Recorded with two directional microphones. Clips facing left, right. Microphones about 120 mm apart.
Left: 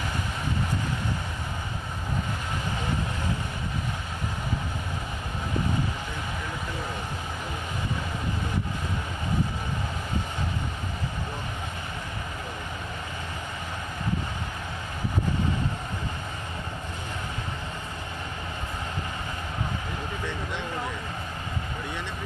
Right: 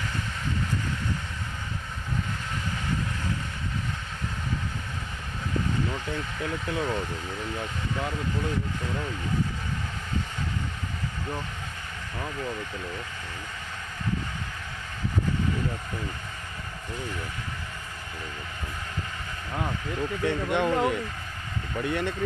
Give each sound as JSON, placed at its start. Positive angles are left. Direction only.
{"t": 20.2, "sound": "speech", "side_deg": -60}